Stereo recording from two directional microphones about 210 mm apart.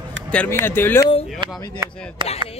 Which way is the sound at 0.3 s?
5° left (ahead or behind).